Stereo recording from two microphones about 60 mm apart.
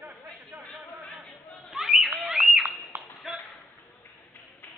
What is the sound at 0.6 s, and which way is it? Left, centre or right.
Chatter, centre.